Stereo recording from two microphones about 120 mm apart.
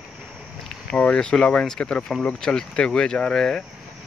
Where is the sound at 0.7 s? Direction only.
5° left (ahead or behind).